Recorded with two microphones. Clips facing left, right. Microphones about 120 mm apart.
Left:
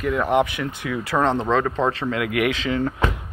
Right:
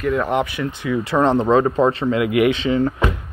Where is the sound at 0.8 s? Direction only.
5° right (ahead or behind).